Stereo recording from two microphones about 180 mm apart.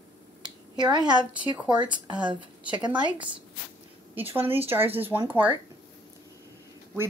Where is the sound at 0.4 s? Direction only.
25° right (ahead or behind).